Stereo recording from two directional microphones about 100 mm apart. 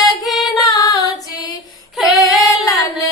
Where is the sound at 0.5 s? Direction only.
40° left (ahead or behind).